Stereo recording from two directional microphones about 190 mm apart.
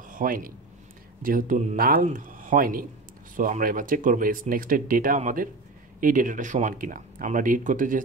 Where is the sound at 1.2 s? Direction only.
45° right (ahead or behind).